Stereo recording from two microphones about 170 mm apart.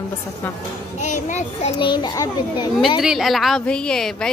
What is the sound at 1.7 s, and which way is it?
Speech, 30° left (ahead or behind).